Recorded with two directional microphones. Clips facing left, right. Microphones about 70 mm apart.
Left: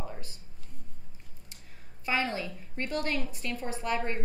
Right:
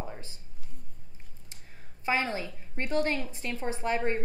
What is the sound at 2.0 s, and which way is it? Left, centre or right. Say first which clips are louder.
A woman's voice: right 1 dB; right.